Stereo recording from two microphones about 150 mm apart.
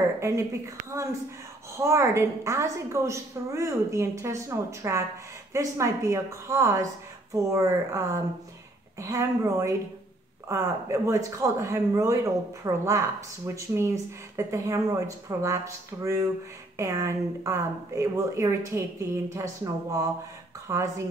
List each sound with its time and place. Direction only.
0.2 s a woman's voice: 20° right (ahead or behind)